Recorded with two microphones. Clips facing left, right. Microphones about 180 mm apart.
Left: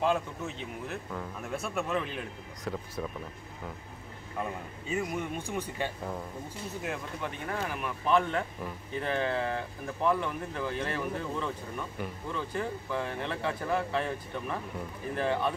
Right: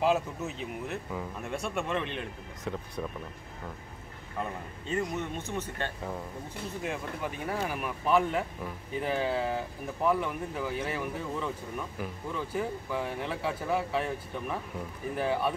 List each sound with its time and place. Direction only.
0.0 s speech: 5° right (ahead or behind)
4.8 s speech: 10° left (ahead or behind)
6.8 s speech: 5° right (ahead or behind)